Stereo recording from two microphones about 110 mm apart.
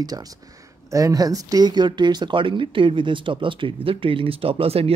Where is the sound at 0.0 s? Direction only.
35° right (ahead or behind).